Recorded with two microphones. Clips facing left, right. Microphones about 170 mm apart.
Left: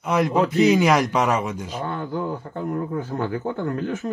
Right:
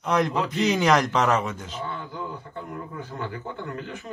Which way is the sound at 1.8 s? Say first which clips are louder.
Left 7 dB; 50° left (ahead or behind).